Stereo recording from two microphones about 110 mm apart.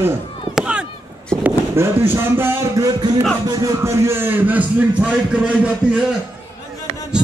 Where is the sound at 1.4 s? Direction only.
20° right (ahead or behind).